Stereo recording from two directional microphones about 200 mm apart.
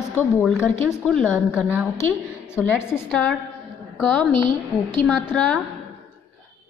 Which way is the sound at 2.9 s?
5° left (ahead or behind).